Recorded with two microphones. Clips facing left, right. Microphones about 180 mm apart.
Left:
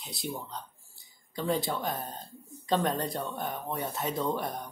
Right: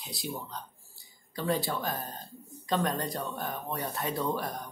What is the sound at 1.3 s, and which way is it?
Speech, 20° left (ahead or behind).